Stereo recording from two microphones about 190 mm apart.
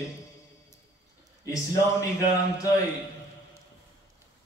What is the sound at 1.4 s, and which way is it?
A man's voice, 15° left (ahead or behind).